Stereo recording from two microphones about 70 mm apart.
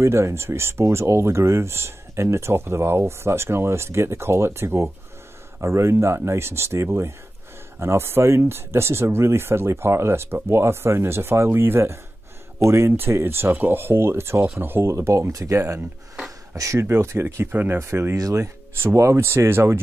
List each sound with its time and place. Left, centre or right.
0.0 s speech: right
16.8 s speech: right
18.1 s speech: right
18.4 s speech: right